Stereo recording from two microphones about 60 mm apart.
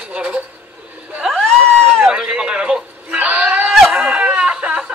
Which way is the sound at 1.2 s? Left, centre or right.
Centre.